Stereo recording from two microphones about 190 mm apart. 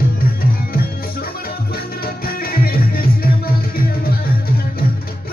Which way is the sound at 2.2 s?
50° left (ahead or behind).